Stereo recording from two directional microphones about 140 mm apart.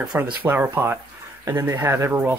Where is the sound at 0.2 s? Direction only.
15° right (ahead or behind).